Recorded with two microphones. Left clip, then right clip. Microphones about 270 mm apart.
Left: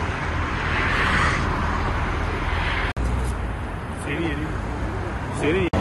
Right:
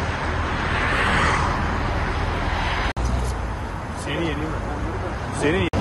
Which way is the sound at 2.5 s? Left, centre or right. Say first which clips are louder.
Even; right.